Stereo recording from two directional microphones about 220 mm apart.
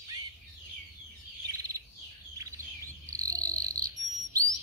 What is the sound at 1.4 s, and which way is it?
Bird, 15° right (ahead or behind).